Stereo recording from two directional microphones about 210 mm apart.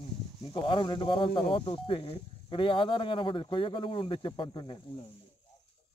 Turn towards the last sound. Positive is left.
turn(degrees=20)  # may be behind; listen again after turning